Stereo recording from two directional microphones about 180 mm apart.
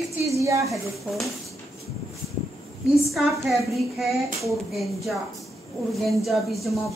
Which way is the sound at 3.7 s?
Centre (ahead or behind).